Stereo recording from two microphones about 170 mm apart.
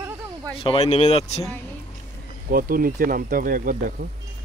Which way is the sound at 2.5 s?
55° right (ahead or behind).